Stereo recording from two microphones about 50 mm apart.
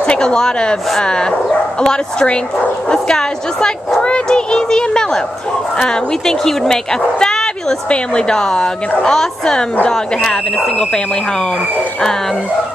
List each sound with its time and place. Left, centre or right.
0.0 s a woman's voice: centre